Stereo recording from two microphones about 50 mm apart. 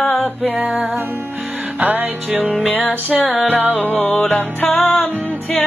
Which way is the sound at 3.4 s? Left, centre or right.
Right.